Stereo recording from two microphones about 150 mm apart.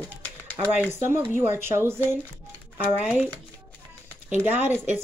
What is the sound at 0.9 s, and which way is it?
Speech, 15° right (ahead or behind).